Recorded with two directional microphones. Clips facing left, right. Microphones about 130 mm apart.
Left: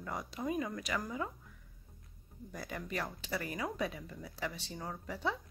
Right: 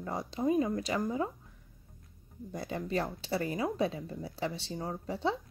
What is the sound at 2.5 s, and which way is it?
Speech, 25° right (ahead or behind).